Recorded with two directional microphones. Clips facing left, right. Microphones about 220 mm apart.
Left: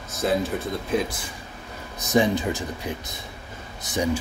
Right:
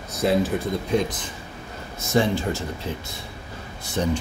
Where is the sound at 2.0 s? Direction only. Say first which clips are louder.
Left 1 dB; 15° left (ahead or behind).